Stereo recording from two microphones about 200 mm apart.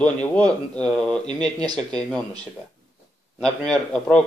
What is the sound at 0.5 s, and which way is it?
Speech, 5° left (ahead or behind).